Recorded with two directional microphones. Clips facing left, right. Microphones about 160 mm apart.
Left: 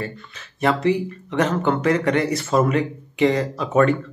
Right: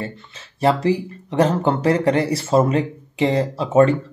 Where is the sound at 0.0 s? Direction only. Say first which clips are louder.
Even; 30° right (ahead or behind).